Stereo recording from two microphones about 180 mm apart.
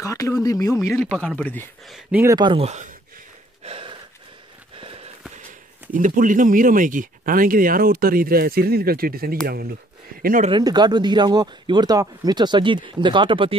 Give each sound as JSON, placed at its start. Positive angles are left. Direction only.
{"t": 0.0, "sound": "speech", "side_deg": 20}
{"t": 1.2, "sound": "speech", "side_deg": 5}
{"t": 1.9, "sound": "speech", "side_deg": -5}
{"t": 2.2, "sound": "speech", "side_deg": -25}
{"t": 3.6, "sound": "a sound", "side_deg": -30}
{"t": 5.9, "sound": "speech", "side_deg": -45}
{"t": 10.5, "sound": "speech", "side_deg": -25}